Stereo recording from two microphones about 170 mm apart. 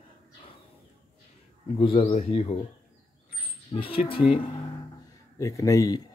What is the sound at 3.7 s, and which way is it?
Speech, 35° left (ahead or behind).